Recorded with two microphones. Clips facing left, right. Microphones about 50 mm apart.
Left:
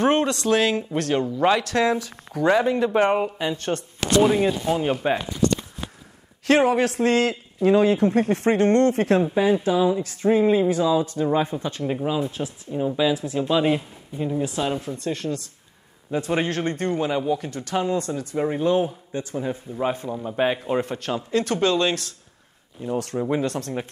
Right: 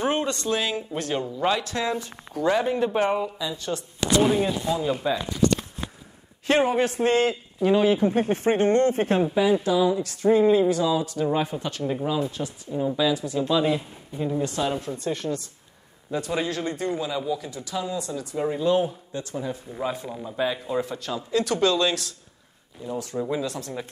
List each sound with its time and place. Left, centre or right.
0.0 s speech: left
0.3 s a man's voice: left
2.4 s speech: left
3.3 s speech: left
6.4 s a man's voice: left
9.3 s speech: left
9.6 s speech: left
14.1 s speech: centre
14.9 s speech: centre
16.1 s speech: left
23.3 s speech: left